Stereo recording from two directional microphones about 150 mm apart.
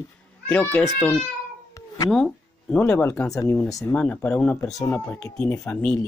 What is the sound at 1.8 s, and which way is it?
Cat, 20° left (ahead or behind).